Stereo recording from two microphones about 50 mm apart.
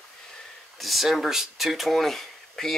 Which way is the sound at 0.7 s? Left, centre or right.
Centre.